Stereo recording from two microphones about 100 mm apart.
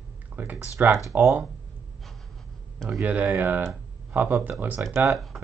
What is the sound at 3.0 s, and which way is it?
Speech, 15° right (ahead or behind).